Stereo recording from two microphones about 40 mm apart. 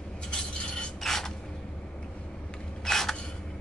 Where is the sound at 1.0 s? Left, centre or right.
Centre.